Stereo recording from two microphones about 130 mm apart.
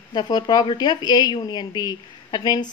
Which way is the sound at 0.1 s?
35° left (ahead or behind).